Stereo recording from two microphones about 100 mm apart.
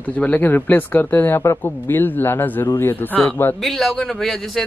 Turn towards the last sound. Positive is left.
turn(degrees=0)  # may be behind; listen again after turning